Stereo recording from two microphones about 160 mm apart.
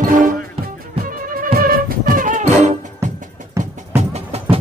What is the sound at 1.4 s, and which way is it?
Music, 65° right (ahead or behind).